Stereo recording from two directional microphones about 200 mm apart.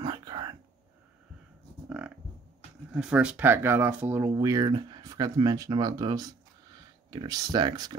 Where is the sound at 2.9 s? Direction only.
5° right (ahead or behind).